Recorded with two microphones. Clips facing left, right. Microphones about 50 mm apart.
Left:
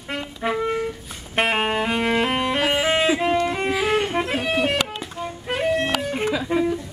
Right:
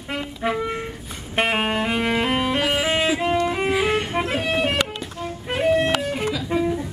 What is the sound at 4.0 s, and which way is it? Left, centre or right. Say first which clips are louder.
Music: left 1 dB; centre.